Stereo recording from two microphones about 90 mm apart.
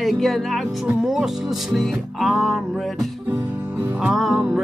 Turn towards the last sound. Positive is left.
turn(degrees=0)  # may be behind; listen again after turning